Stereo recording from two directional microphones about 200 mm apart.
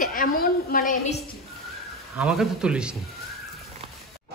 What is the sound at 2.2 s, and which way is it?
Speech, centre (ahead or behind).